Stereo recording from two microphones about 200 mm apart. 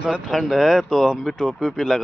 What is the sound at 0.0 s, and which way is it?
Speech, centre (ahead or behind).